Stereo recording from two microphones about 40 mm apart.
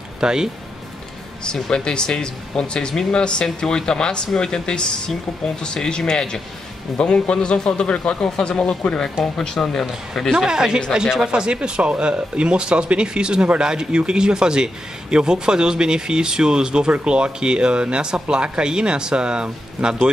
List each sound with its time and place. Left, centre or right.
0.2 s speech: centre
1.4 s a man's voice: left
10.3 s speech: centre